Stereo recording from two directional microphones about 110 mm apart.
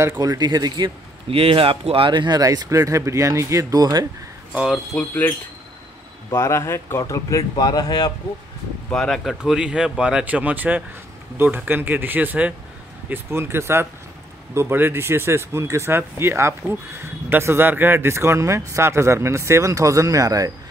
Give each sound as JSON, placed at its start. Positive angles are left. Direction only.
{"t": 0.2, "sound": "speech", "side_deg": -35}
{"t": 1.3, "sound": "speech", "side_deg": -60}
{"t": 4.5, "sound": "speech", "side_deg": -10}
{"t": 4.9, "sound": "speech", "side_deg": 15}
{"t": 6.3, "sound": "speech", "side_deg": 25}
{"t": 8.9, "sound": "speech", "side_deg": 5}